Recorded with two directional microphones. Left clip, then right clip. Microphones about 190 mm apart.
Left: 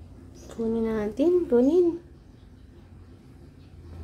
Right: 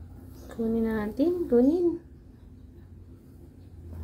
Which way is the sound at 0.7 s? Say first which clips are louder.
Left 2 dB; centre (ahead or behind).